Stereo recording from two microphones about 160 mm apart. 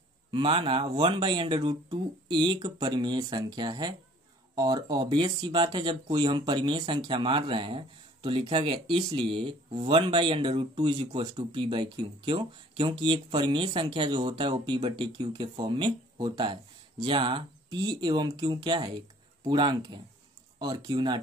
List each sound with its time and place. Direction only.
0.3 s speech: 35° right (ahead or behind)